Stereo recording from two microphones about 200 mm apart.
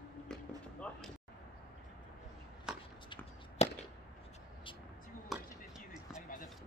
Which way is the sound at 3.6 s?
30° left (ahead or behind).